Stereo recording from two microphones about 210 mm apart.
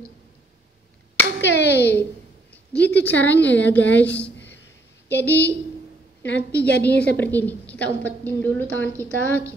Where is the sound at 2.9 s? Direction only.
10° left (ahead or behind).